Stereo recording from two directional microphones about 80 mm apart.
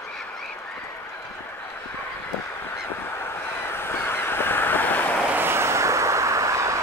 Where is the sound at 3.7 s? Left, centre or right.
Left.